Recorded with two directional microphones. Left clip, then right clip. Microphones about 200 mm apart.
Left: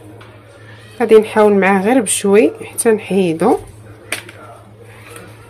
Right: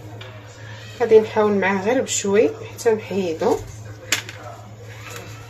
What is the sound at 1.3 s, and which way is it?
Speech, 45° left (ahead or behind).